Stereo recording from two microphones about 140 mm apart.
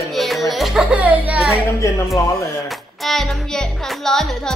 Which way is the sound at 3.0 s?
Centre (ahead or behind).